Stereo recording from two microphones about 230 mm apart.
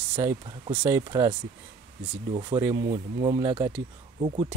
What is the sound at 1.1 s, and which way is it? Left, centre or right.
Speech, centre.